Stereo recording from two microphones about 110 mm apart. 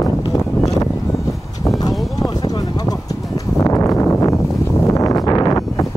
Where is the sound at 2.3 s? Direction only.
35° left (ahead or behind).